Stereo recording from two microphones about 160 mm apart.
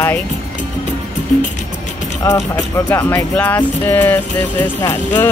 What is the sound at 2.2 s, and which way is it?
Speech, 20° left (ahead or behind).